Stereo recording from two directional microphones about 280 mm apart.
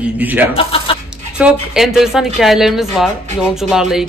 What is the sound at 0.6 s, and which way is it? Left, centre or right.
Speech, centre.